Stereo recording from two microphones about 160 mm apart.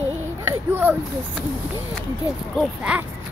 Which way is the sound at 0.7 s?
10° right (ahead or behind).